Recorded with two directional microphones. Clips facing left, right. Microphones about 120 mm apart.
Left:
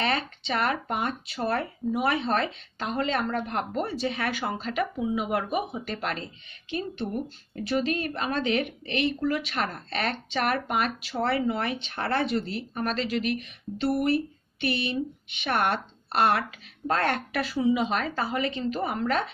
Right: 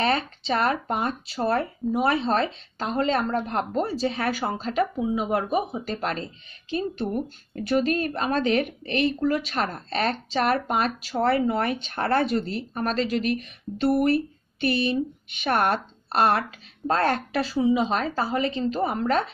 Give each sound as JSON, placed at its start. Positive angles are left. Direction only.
{"t": 0.0, "sound": "speech", "side_deg": -35}